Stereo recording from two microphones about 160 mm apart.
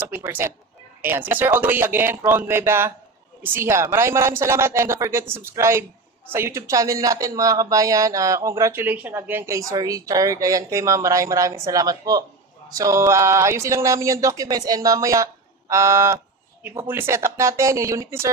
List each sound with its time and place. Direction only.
0.1 s speech: 15° right (ahead or behind)